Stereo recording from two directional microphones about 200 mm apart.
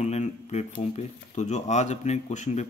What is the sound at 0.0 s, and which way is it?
Speech, 35° left (ahead or behind).